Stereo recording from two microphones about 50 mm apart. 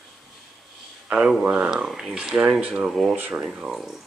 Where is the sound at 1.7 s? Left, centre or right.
Centre.